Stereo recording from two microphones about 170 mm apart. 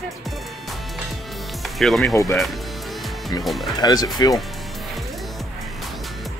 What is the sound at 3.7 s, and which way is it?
Speech, 20° left (ahead or behind).